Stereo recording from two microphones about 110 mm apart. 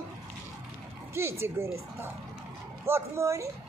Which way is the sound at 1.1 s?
25° right (ahead or behind).